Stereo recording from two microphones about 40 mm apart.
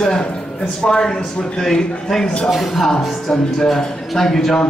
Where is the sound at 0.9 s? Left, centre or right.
Centre.